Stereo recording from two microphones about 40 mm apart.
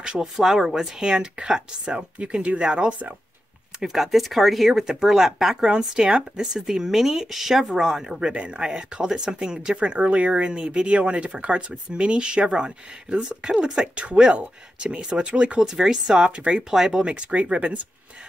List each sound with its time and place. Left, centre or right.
0.0 s speech: centre
0.4 s speech: centre
2.0 s speech: right
3.8 s speech: centre; by 15.6 s right
15.6 s speech: centre
16.7 s speech: centre
17.1 s speech: right